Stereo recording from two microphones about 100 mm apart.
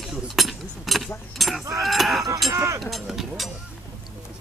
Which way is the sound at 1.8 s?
Centre (ahead or behind).